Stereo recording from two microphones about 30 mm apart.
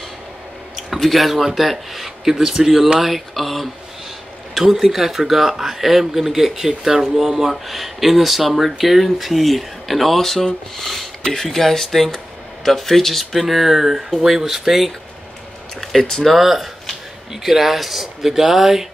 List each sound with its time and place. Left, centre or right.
0.7 s speech: centre
3.0 s speech: centre
4.6 s speech: centre
16.0 s speech: centre
16.4 s speech: centre